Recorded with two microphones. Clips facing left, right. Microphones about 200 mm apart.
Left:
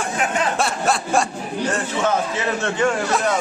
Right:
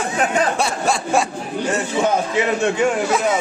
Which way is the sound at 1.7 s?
15° right (ahead or behind).